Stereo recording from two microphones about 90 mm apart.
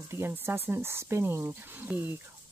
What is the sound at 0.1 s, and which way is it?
Speech, 25° right (ahead or behind).